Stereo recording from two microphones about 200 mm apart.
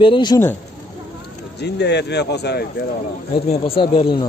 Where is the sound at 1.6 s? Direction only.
55° left (ahead or behind).